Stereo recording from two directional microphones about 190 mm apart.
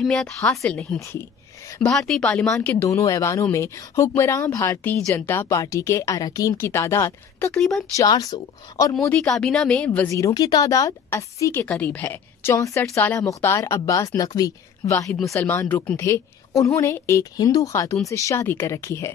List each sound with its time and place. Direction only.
0.0 s speech: 5° left (ahead or behind)
0.4 s speech: 15° left (ahead or behind)
1.9 s speech: centre (ahead or behind)
7.9 s speech: 15° left (ahead or behind)
9.0 s speech: 5° left (ahead or behind)